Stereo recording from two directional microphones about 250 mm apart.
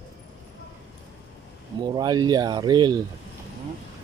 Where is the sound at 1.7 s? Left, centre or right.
Centre.